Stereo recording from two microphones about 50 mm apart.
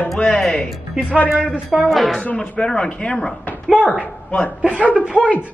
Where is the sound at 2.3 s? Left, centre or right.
Centre.